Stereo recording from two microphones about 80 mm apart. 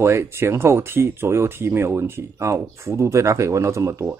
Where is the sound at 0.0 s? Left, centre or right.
Right.